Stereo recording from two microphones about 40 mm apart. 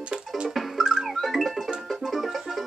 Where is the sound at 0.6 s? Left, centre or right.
Centre.